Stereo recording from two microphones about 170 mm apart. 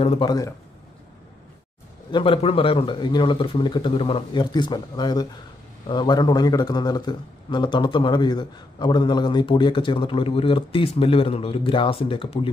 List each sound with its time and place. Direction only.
0.0 s speech: 35° left (ahead or behind)
0.3 s a man's voice: 20° left (ahead or behind)
2.0 s a man's voice: 30° left (ahead or behind)